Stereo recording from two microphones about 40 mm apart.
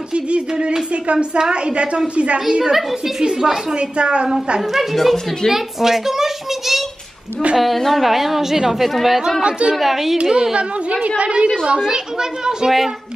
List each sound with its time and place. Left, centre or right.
0.1 s a sound: right
1.0 s a woman's voice: right
2.7 s a woman's voice: centre
4.6 s a woman's voice: centre
7.5 s a woman's voice: centre
9.4 s a woman's voice: right
9.8 s a woman's voice: centre
10.3 s a woman's voice: right